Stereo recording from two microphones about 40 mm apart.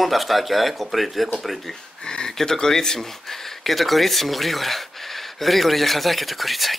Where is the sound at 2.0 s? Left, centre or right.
Centre.